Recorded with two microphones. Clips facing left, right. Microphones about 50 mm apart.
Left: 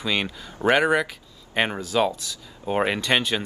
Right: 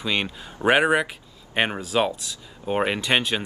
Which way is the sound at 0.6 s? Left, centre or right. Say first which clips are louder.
Right 1 dB; centre.